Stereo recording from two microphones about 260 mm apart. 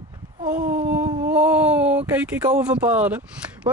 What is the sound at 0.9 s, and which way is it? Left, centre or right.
Speech, centre.